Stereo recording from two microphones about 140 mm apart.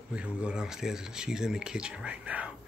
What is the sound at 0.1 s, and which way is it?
Speech, 5° right (ahead or behind).